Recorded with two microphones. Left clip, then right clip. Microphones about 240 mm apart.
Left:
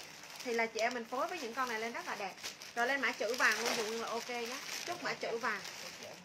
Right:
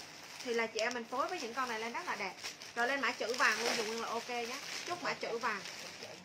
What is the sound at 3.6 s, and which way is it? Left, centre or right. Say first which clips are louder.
Speech: right 1 dB; centre.